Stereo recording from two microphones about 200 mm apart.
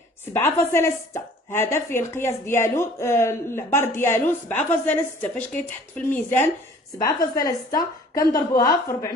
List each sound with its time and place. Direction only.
0.2 s speech: 10° left (ahead or behind)